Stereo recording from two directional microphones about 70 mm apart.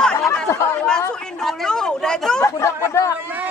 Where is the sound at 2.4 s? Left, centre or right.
Left.